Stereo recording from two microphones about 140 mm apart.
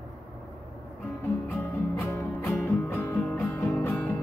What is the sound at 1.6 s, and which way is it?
Music, 15° left (ahead or behind).